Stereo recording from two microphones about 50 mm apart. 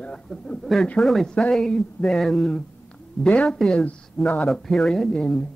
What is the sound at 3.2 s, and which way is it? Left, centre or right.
Speech, left.